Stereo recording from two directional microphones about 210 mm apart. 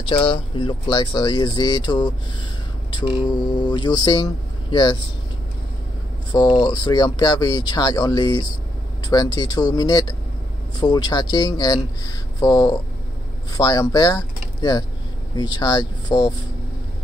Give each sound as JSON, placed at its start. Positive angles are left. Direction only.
{"t": 0.0, "sound": "speech", "side_deg": 25}
{"t": 6.3, "sound": "speech", "side_deg": 20}